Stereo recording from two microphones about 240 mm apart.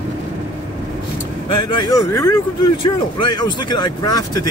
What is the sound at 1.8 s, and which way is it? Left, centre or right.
Speech, centre.